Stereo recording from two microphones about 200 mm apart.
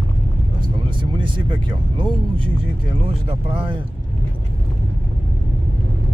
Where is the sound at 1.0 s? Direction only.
25° right (ahead or behind).